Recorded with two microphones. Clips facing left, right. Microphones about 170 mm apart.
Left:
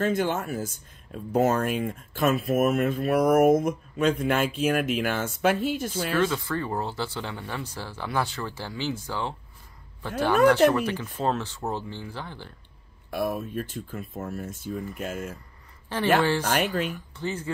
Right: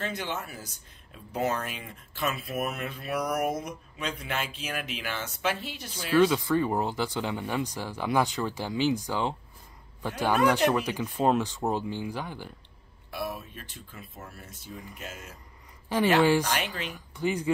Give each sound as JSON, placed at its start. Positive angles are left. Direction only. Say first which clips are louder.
{"t": 0.0, "sound": "speech", "louder": "left 9 dB", "side_deg": 50}
{"t": 6.2, "sound": "speech", "louder": "right 3 dB", "side_deg": -15}
{"t": 13.1, "sound": "speech", "louder": "left 7 dB", "side_deg": 50}
{"t": 15.9, "sound": "speech", "louder": "right 3 dB", "side_deg": -15}
{"t": 17.2, "sound": "speech", "louder": "right 3 dB", "side_deg": -15}